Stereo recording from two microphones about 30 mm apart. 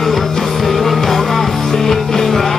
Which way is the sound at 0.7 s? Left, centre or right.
Centre.